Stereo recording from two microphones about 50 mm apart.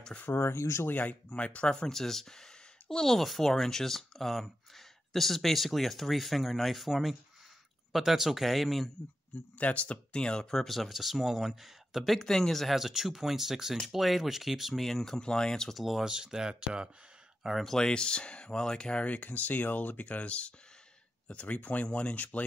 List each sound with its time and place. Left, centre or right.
0.2 s speech: left
0.6 s speech: left
0.8 s speech: left
1.3 s speech: left; by 8.9 s centre
9.6 s speech: left; by 12.0 s centre
12.0 s speech: centre
15.7 s speech: centre
17.4 s speech: centre
17.7 s speech: centre
19.0 s speech: left